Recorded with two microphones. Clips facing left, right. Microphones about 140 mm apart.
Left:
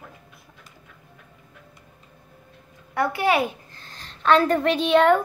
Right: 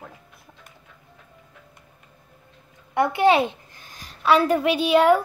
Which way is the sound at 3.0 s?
20° right (ahead or behind).